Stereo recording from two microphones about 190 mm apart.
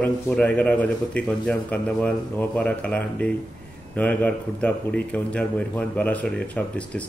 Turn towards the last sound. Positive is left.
turn(degrees=5)  # may be behind; listen again after turning